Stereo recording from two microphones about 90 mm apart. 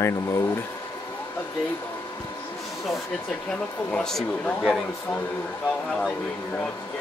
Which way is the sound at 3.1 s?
10° left (ahead or behind).